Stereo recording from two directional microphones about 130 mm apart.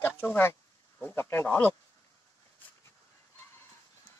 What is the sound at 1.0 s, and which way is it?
Speech, 15° left (ahead or behind).